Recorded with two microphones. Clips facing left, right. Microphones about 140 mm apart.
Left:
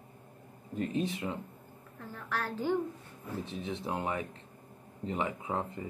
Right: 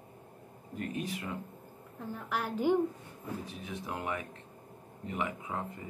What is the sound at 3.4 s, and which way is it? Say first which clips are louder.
Speech: left 4 dB; 25° left (ahead or behind).